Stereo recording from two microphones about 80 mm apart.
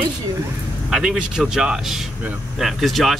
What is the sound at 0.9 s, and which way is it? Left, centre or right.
Speech, centre.